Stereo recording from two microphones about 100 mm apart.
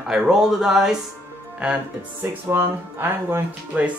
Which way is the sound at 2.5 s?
25° right (ahead or behind).